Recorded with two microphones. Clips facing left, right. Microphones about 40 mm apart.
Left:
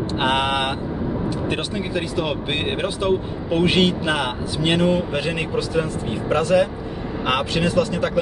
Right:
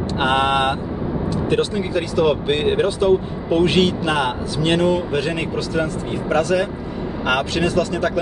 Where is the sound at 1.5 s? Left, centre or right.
Centre.